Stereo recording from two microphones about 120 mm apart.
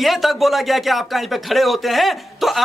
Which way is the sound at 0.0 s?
Centre (ahead or behind).